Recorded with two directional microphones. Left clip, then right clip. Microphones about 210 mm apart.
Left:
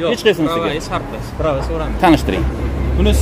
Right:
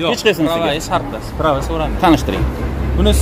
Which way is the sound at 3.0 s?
30° right (ahead or behind).